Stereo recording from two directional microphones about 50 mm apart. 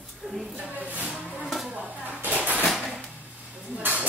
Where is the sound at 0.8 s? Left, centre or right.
Right.